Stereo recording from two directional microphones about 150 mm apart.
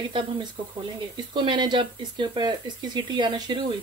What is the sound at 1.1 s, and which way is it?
Speech, 30° right (ahead or behind).